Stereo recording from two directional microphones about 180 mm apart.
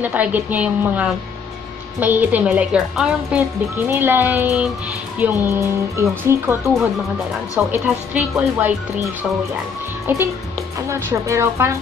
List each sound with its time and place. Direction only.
0.0 s speech: 10° right (ahead or behind)
10.9 s speech: 15° right (ahead or behind)